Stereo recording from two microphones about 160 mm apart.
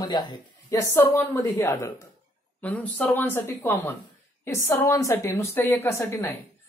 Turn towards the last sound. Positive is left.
turn(degrees=20)  # may be behind; listen again after turning